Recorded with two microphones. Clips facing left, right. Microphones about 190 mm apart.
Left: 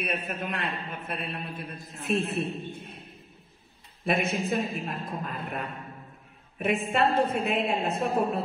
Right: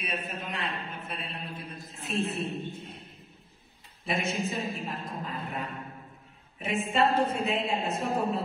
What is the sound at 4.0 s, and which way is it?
A woman's voice, 60° left (ahead or behind).